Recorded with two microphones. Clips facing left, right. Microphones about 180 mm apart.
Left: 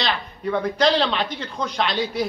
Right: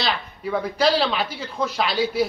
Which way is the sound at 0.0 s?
5° right (ahead or behind).